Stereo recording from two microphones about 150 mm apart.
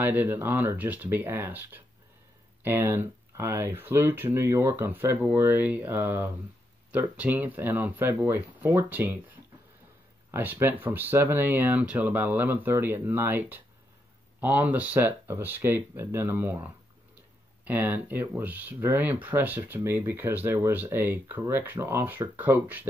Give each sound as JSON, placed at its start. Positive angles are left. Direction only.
{"t": 0.0, "sound": "speech", "side_deg": -10}